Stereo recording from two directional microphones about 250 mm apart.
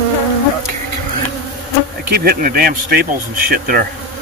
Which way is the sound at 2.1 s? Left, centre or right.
Right.